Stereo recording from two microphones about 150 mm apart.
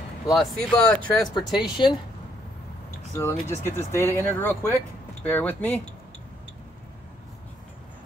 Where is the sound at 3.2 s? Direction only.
15° left (ahead or behind).